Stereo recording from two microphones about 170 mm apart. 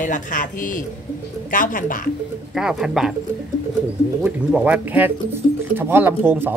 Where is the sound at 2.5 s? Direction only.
5° right (ahead or behind).